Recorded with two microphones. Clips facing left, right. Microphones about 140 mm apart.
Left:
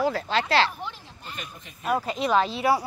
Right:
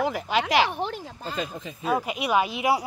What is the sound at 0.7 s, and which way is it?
Speech, 90° right.